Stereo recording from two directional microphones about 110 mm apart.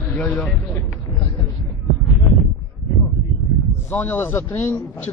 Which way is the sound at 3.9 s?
20° left (ahead or behind).